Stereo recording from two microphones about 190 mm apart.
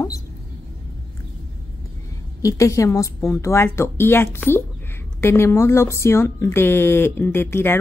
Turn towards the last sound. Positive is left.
turn(degrees=10)  # may be behind; listen again after turning